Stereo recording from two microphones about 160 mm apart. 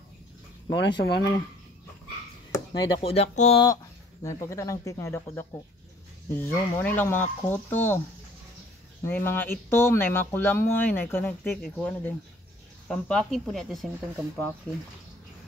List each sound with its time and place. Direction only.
0.7 s speech: 90° left
2.5 s chop: 25° left (ahead or behind)
3.0 s speech: 40° left (ahead or behind)
3.6 s speech: 20° left (ahead or behind)
9.0 s speech: 15° left (ahead or behind)